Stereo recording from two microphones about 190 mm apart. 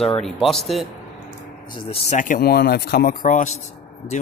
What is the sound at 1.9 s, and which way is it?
Speech, 40° left (ahead or behind).